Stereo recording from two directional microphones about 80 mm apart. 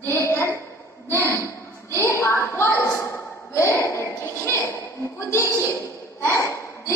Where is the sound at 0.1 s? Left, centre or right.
Left.